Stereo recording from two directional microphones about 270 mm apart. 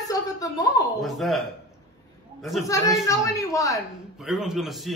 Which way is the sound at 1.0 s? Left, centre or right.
Centre.